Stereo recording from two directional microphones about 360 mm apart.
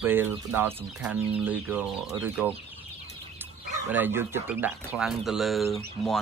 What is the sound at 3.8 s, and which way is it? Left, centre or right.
Speech, centre.